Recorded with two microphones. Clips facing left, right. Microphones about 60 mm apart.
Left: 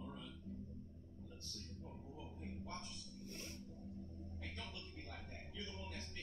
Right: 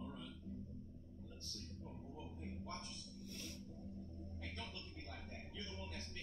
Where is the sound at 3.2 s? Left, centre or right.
Left.